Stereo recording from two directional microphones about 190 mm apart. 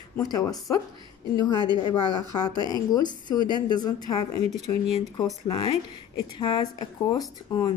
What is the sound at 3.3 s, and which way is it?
Speech, 25° right (ahead or behind).